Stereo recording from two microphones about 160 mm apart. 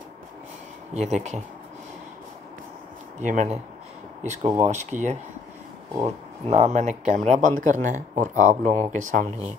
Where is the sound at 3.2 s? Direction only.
50° right (ahead or behind).